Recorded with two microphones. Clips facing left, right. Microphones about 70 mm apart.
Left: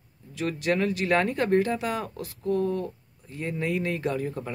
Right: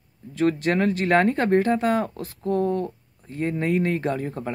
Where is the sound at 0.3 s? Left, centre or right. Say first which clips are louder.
Right 5 dB; right.